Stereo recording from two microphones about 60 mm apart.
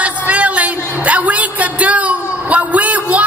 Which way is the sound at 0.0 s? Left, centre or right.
Right.